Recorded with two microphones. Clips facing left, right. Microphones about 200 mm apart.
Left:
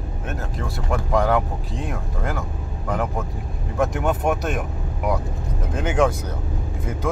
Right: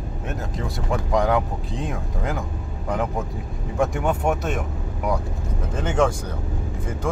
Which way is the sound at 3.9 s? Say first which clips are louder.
Left 1 dB; 5° left (ahead or behind).